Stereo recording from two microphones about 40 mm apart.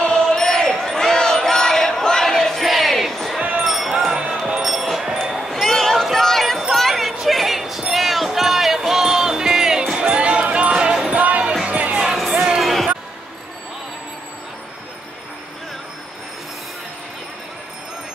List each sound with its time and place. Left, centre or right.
0.0 s a sound: centre
3.6 s music: centre
4.1 s music: right
4.6 s wind chime: centre
5.5 s a sound: centre
7.2 s basketball bounce: centre
7.9 s music: centre
9.9 s a sound: right
10.7 s music: right
11.1 s music: right
12.4 s basketball bounce: centre